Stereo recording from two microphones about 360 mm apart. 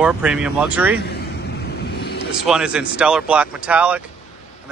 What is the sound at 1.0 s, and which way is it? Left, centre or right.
Vehicle, left.